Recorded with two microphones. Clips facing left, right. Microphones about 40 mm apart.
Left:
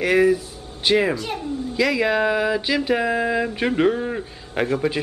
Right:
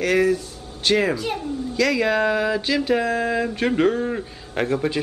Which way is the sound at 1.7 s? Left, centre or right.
Centre.